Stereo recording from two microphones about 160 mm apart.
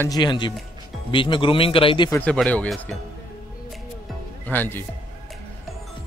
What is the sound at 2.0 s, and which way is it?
Speech, 15° left (ahead or behind).